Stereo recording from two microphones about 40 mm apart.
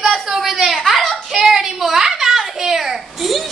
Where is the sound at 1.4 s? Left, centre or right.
Centre.